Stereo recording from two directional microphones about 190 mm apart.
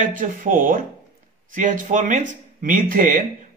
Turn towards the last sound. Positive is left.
turn(degrees=-45)  # may be behind; listen again after turning